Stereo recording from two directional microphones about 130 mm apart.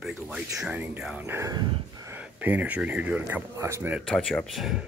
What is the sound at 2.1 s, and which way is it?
Speech, 10° right (ahead or behind).